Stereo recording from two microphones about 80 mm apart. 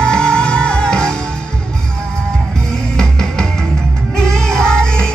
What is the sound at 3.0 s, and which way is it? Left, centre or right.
Music, centre.